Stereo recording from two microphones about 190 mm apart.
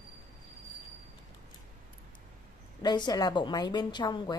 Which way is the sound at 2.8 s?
20° left (ahead or behind).